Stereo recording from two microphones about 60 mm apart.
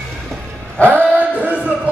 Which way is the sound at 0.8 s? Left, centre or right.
Right.